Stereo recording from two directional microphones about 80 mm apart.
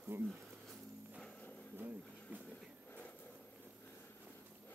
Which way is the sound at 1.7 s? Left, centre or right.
Right.